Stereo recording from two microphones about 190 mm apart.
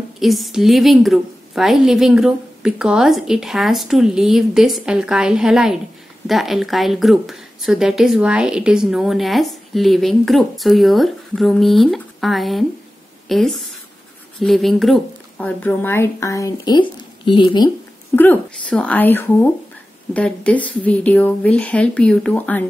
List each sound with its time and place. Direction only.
0.2 s a woman's voice: centre (ahead or behind); by 17.6 s 25° left (ahead or behind)
18.1 s speech: 10° left (ahead or behind)